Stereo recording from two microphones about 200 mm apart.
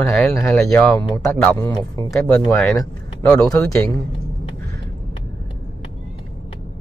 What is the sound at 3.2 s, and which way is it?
Speech, 5° left (ahead or behind).